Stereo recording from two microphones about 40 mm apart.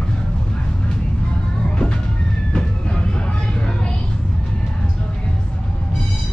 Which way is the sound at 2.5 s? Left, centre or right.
Left.